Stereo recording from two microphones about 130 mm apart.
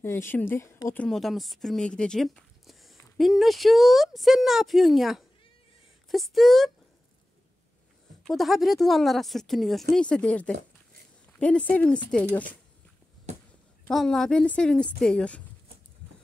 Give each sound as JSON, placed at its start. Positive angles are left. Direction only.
{"t": 0.0, "sound": "a woman's voice", "side_deg": 20}
{"t": 1.0, "sound": "speech", "side_deg": 0}
{"t": 8.2, "sound": "speech", "side_deg": 0}
{"t": 13.8, "sound": "speech", "side_deg": 5}